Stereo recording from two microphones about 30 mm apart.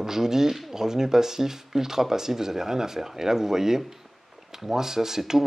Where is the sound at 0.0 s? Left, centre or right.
Centre.